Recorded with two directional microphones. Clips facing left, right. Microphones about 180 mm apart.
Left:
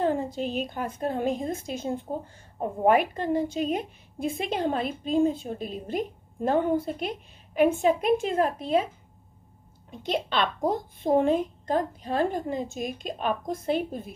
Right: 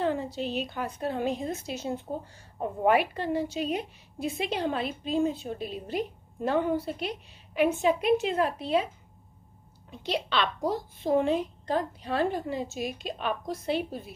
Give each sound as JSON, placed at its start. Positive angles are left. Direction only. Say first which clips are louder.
{"t": 0.0, "sound": "a woman's voice", "louder": "left 3 dB", "side_deg": 50}
{"t": 9.8, "sound": "a woman's voice", "louder": "left 2 dB", "side_deg": 50}